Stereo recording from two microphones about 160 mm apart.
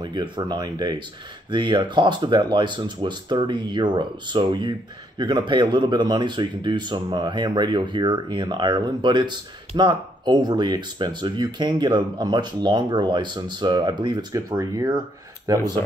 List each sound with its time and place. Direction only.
0.0 s speech: 30° right (ahead or behind)